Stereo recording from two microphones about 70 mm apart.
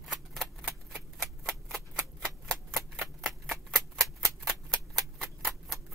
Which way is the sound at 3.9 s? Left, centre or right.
Centre.